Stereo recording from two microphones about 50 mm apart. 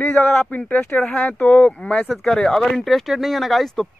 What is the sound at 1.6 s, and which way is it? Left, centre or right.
Speech, centre.